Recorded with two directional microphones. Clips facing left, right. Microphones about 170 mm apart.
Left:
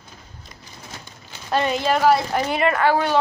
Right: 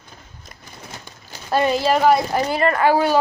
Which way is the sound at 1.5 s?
5° right (ahead or behind).